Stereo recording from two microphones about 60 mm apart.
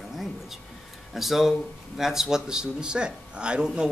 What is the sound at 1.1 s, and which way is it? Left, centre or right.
A man's voice, centre.